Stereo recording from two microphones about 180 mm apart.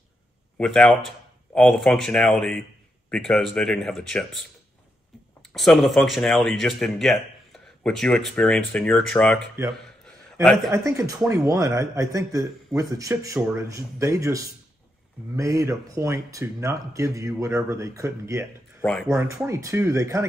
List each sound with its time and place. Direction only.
0.6 s speech: 5° left (ahead or behind)
5.5 s speech: centre (ahead or behind)
10.4 s speech: centre (ahead or behind)
10.8 s speech: 20° right (ahead or behind)